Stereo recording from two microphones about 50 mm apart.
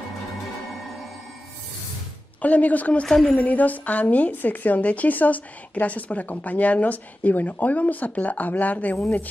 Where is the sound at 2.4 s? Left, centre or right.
Left.